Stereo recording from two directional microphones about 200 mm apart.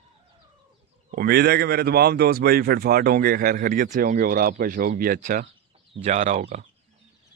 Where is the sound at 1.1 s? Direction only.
50° right (ahead or behind).